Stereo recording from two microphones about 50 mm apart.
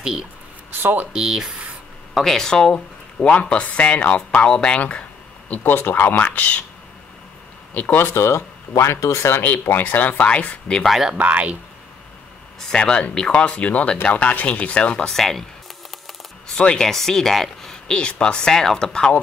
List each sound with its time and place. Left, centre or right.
0.0 s speech: centre
0.7 s speech: right
1.1 s speech: centre
2.1 s speech: centre
3.2 s a man's voice: left
5.5 s speech: left
7.7 s speech: left
9.8 s speech: left
10.9 s speech: centre
11.1 s speech: right
12.5 s speech: centre
15.0 s speech: centre
16.4 s speech: centre